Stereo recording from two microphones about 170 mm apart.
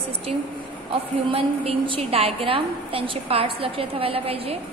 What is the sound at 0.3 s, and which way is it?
A woman's voice, 40° right (ahead or behind).